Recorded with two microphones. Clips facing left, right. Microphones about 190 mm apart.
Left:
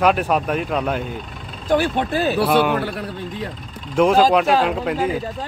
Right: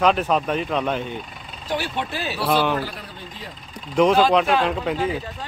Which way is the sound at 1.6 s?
50° left (ahead or behind).